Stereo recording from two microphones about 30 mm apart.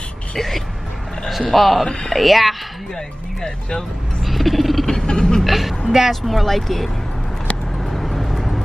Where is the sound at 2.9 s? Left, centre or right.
Left.